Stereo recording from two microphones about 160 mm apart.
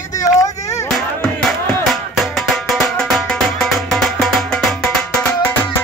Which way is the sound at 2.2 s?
Centre (ahead or behind).